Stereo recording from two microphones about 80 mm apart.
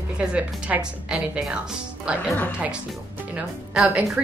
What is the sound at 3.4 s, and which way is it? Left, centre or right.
Speech, centre.